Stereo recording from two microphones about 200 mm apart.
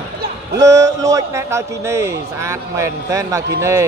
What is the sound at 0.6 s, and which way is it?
A man's voice, 15° right (ahead or behind).